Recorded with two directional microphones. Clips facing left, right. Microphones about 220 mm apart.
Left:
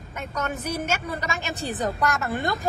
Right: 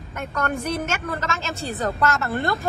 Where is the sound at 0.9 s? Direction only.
15° left (ahead or behind).